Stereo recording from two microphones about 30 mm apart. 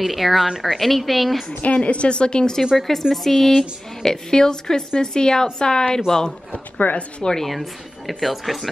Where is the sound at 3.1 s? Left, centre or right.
Centre.